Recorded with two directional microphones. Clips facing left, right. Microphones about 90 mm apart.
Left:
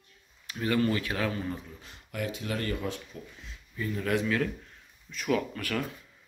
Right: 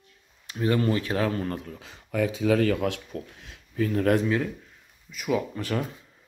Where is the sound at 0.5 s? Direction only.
30° right (ahead or behind).